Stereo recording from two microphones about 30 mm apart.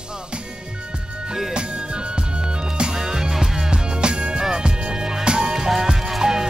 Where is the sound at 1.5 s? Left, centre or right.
Right.